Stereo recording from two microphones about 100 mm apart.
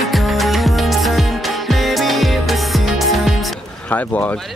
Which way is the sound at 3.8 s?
15° left (ahead or behind).